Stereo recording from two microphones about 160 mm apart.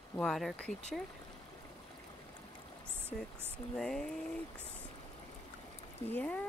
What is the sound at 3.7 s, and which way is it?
Speech, 5° left (ahead or behind).